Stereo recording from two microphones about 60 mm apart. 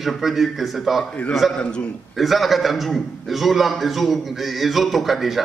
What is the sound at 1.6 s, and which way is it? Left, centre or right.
Speech, centre.